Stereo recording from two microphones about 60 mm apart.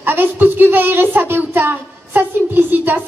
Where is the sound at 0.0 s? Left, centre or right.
Right.